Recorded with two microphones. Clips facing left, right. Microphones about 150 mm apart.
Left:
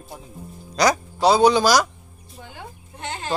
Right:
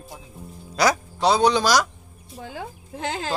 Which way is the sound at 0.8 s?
5° right (ahead or behind).